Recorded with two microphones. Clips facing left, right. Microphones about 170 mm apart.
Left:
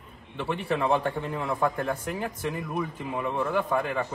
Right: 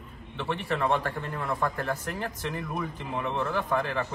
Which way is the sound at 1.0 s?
15° left (ahead or behind).